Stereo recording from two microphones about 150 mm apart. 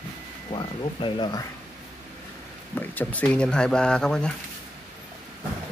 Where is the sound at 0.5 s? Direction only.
35° left (ahead or behind).